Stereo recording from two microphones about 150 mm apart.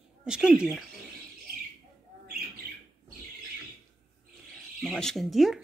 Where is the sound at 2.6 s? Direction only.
90° right.